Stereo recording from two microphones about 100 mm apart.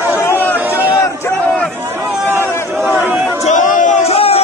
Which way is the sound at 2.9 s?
20° right (ahead or behind).